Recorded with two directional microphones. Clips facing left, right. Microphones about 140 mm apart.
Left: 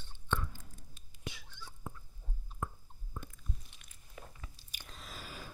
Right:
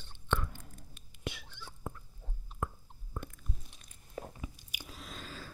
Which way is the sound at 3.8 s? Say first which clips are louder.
Right 3 dB; 35° right (ahead or behind).